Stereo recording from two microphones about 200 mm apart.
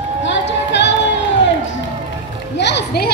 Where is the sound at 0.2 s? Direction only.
65° left (ahead or behind).